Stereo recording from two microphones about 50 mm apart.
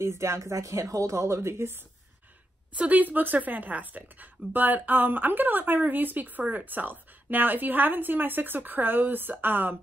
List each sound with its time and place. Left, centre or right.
0.0 s speech: right
2.7 s a woman's voice: right